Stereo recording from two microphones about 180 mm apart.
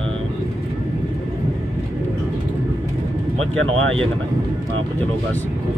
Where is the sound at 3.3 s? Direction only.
90° right.